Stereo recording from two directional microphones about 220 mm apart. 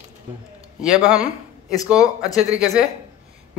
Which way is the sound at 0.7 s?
Centre (ahead or behind).